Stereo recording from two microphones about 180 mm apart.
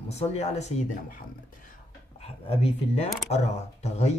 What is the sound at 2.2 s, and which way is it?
Speech, 35° left (ahead or behind).